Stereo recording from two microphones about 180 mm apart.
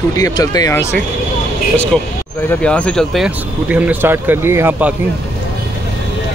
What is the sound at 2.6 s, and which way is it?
Speech, 5° left (ahead or behind).